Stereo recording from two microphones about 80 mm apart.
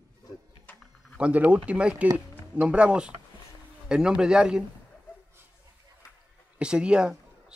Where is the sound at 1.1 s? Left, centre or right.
Centre.